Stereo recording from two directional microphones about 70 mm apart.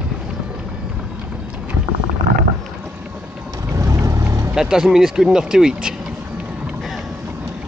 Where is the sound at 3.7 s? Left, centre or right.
Right.